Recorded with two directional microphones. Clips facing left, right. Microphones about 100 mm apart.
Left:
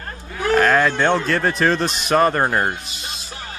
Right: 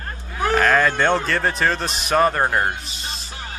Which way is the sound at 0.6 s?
5° left (ahead or behind).